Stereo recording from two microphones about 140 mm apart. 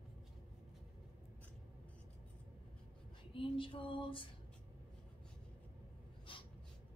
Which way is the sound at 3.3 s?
40° left (ahead or behind).